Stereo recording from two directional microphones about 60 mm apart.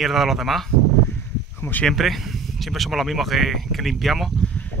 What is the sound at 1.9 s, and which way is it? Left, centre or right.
Speech, centre.